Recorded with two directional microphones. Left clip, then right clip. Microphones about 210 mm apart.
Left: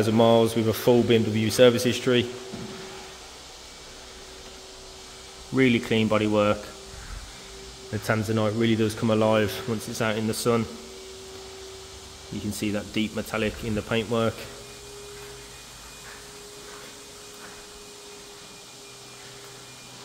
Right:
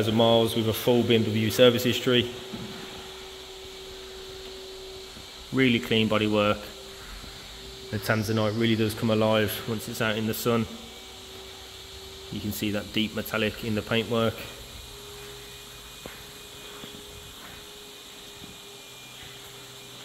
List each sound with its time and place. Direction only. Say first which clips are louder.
0.0 s speech: left 2 dB; 10° left (ahead or behind)
5.5 s speech: left 1 dB; 10° left (ahead or behind)
7.9 s speech: left 1 dB; 5° left (ahead or behind)
12.5 s speech: even; centre (ahead or behind)